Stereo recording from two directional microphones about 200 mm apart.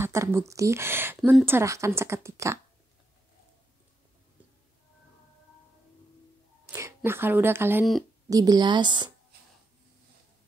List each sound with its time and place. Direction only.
0.0 s speech: 15° right (ahead or behind)
6.6 s a woman's voice: 15° right (ahead or behind)